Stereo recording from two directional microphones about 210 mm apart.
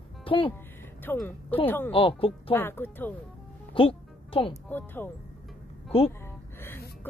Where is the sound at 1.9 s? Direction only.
25° left (ahead or behind).